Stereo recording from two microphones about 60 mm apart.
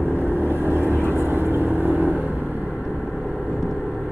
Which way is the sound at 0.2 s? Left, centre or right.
Right.